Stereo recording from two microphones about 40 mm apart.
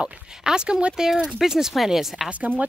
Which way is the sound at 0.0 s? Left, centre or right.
Right.